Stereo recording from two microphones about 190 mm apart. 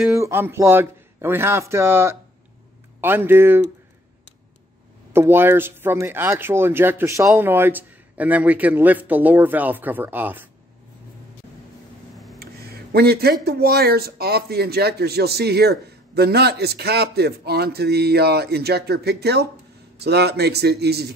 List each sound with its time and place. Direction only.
0.2 s speech: 10° right (ahead or behind)
5.1 s speech: 10° right (ahead or behind)
12.9 s speech: 55° right (ahead or behind)